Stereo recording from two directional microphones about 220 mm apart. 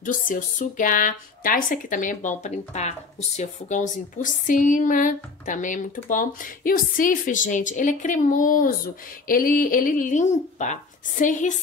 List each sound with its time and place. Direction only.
0.0 s speech: 35° left (ahead or behind)